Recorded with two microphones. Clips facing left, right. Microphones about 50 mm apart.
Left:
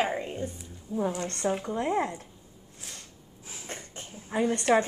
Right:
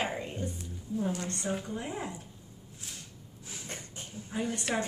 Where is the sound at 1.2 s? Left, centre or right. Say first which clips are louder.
Left 5 dB; left.